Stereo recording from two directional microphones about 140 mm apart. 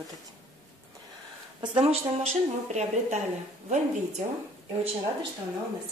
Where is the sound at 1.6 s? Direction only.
35° right (ahead or behind).